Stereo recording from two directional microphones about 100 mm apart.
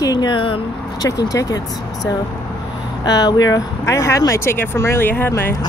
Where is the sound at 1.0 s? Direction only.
40° left (ahead or behind).